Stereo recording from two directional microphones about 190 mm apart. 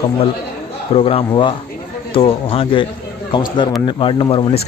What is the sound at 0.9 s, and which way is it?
Speech, 30° left (ahead or behind).